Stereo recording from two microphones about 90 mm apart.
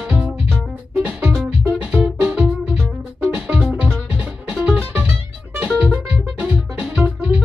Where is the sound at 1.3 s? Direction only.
5° right (ahead or behind).